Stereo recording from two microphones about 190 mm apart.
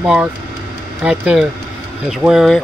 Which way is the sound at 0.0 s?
5° right (ahead or behind).